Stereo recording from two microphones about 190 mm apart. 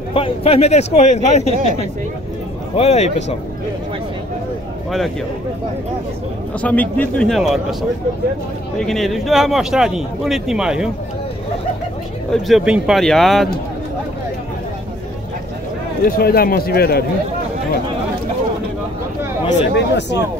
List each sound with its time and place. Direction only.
0.1 s speech: 30° left (ahead or behind)
6.6 s a man's voice: 10° left (ahead or behind)
8.7 s a man's voice: centre (ahead or behind)
12.3 s a man's voice: centre (ahead or behind)
16.1 s speech: 55° left (ahead or behind)
19.7 s speech: 65° left (ahead or behind)